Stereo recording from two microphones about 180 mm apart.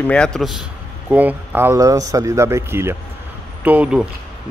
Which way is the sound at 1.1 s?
10° right (ahead or behind).